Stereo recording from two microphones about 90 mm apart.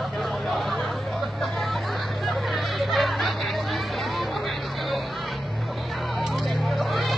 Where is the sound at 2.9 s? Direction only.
Centre (ahead or behind).